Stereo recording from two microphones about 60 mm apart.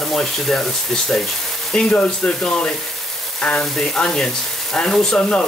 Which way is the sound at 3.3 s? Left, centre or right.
Centre.